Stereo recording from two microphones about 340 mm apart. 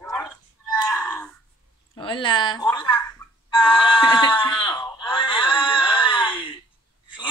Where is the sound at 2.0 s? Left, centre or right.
Centre.